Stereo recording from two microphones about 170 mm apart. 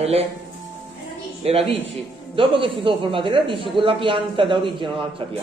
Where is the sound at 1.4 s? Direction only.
35° right (ahead or behind).